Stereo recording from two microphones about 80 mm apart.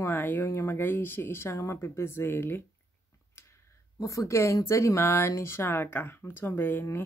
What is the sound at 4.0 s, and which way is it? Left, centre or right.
A woman's voice, left.